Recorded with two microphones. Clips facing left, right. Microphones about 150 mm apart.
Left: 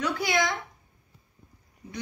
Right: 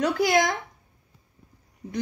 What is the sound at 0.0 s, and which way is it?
Speech, 45° right (ahead or behind).